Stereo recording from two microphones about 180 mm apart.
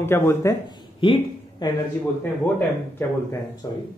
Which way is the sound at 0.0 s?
15° left (ahead or behind).